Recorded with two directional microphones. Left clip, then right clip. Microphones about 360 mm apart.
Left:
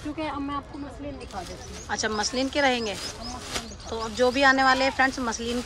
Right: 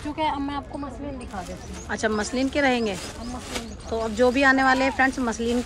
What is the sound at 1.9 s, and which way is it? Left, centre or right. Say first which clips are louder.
Speech: right 2 dB; centre.